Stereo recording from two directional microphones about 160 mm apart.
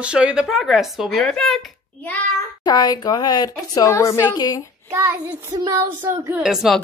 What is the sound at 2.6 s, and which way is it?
A woman's voice, 25° left (ahead or behind).